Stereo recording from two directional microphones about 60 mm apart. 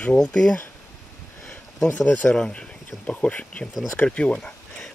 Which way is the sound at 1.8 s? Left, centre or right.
Left.